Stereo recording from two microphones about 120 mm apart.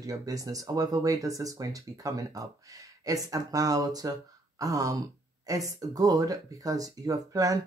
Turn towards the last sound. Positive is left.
turn(degrees=-30)  # may be behind; listen again after turning